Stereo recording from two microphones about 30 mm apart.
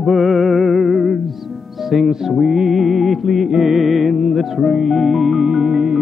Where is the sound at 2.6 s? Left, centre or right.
Centre.